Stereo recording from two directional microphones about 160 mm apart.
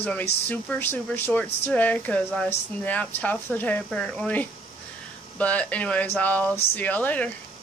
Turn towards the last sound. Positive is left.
turn(degrees=10)  # may be behind; listen again after turning